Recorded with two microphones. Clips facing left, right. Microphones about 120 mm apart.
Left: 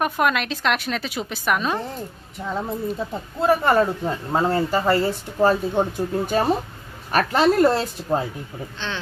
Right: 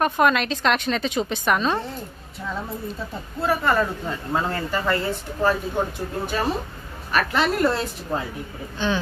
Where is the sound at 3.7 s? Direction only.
30° left (ahead or behind).